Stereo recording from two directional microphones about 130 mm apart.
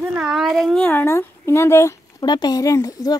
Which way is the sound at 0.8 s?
20° left (ahead or behind).